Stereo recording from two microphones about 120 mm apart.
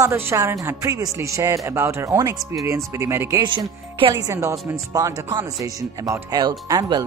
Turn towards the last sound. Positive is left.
turn(degrees=-35)  # may be behind; listen again after turning